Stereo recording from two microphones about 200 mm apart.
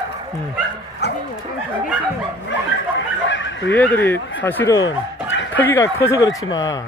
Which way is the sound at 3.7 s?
10° left (ahead or behind).